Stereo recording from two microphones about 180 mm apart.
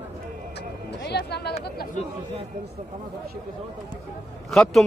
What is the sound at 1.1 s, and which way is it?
Speech, 65° left (ahead or behind).